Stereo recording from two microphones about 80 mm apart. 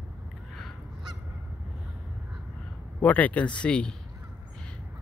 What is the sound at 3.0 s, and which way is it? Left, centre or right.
Speech, centre.